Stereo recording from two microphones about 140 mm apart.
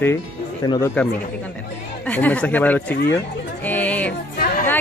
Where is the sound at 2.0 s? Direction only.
10° left (ahead or behind).